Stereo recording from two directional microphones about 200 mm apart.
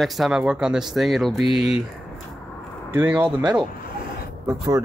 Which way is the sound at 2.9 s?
10° right (ahead or behind).